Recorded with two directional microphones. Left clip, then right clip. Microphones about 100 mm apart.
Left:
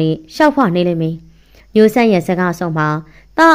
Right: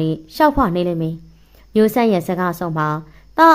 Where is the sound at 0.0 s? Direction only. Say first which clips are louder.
Left 3 dB; 25° left (ahead or behind).